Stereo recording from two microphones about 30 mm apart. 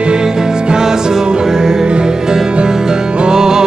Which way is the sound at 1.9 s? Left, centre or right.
Right.